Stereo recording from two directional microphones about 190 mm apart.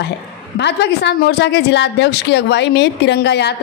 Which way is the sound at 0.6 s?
65° left (ahead or behind).